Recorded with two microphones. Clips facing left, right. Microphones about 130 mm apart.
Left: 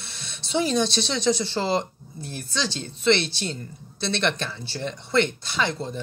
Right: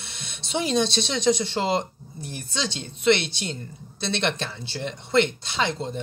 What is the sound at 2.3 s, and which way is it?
Speech, 20° right (ahead or behind).